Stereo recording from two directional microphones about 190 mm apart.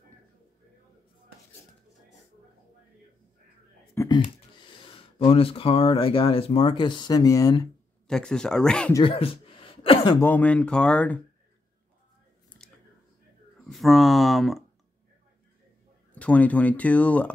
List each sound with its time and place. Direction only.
3.9 s a sound: 15° left (ahead or behind)
4.6 s speech: 25° left (ahead or behind)
8.1 s speech: 5° left (ahead or behind)
9.0 s a sound: 30° left (ahead or behind)
10.2 s speech: 10° left (ahead or behind)
13.7 s speech: centre (ahead or behind)
16.2 s speech: 10° left (ahead or behind)